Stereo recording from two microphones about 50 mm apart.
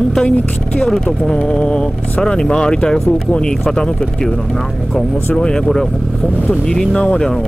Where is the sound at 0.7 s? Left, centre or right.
Centre.